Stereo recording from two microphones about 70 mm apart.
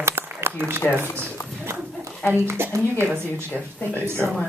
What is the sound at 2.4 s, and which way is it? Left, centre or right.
Speech, right.